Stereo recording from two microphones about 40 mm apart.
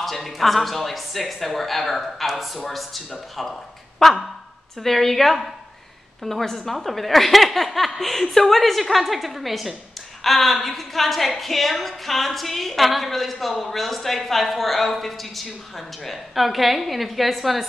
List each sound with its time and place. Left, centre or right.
0.0 s a woman's voice: centre